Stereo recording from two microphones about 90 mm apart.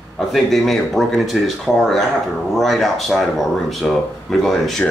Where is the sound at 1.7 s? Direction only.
10° right (ahead or behind).